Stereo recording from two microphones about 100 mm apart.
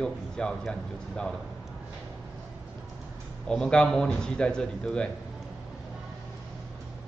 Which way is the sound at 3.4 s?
5° left (ahead or behind).